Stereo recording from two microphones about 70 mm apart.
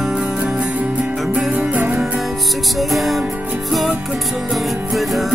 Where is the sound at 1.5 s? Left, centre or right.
Right.